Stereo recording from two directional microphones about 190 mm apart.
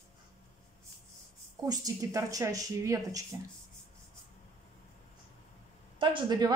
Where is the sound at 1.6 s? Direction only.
20° right (ahead or behind).